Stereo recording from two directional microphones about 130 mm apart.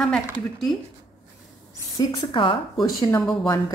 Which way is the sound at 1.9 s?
40° left (ahead or behind).